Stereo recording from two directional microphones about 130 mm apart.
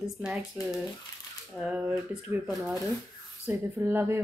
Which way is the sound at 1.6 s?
10° right (ahead or behind).